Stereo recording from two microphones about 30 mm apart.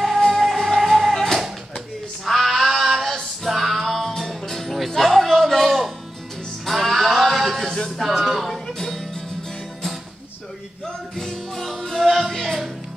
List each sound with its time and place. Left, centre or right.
0.4 s music: centre
1.1 s music: centre
2.2 s female singing: centre
4.2 s music: centre
8.1 s music: centre
8.5 s music: centre
11.1 s music: centre